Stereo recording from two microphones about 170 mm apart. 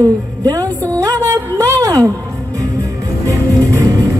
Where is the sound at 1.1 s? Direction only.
20° right (ahead or behind).